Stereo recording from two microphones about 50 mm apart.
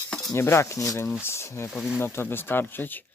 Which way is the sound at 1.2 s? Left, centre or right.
Left.